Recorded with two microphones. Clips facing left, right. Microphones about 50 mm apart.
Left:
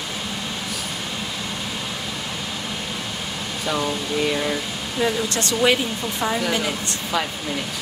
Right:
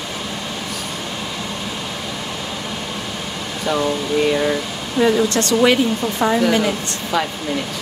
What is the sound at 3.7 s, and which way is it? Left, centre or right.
Speech, centre.